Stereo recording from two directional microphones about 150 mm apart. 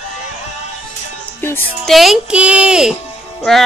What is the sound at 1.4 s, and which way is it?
Music, 15° left (ahead or behind).